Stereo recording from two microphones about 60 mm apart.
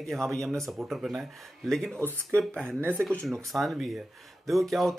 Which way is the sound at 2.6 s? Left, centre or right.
Right.